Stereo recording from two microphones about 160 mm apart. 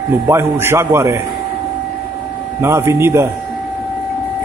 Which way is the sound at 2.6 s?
15° right (ahead or behind).